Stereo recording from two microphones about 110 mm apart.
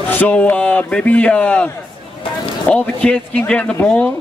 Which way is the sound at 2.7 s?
10° left (ahead or behind).